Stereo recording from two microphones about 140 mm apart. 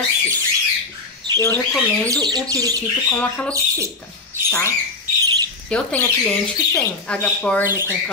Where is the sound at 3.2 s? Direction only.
10° left (ahead or behind).